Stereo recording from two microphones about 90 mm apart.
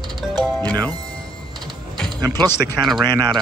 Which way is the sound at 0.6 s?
50° right (ahead or behind).